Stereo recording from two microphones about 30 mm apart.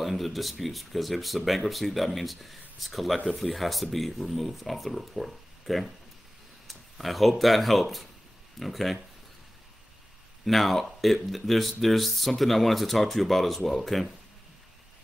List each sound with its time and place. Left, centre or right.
0.0 s speech: centre
10.4 s speech: centre